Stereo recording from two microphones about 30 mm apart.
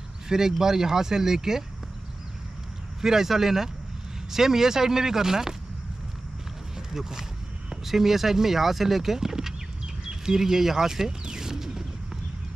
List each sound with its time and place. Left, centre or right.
0.3 s speech: centre
3.0 s speech: centre
6.9 s speech: centre
11.2 s a sound: right